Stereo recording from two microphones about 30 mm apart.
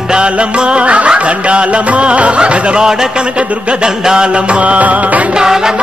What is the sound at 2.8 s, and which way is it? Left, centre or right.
Music, centre.